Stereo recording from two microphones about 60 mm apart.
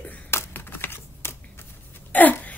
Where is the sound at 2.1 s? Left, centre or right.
Left.